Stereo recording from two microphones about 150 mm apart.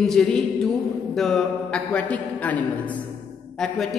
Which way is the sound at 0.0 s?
5° left (ahead or behind).